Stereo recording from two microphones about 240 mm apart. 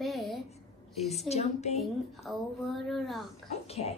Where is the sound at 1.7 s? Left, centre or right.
Centre.